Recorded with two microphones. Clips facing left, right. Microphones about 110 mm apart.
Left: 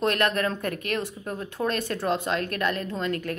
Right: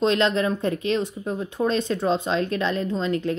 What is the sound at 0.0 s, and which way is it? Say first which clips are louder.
Speech: right 4 dB; 20° right (ahead or behind).